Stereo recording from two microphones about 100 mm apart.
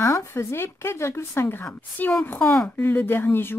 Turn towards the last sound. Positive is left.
turn(degrees=20)  # may be behind; listen again after turning